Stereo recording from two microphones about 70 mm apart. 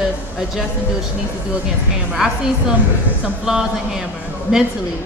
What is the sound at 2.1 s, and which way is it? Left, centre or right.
A woman's voice, centre.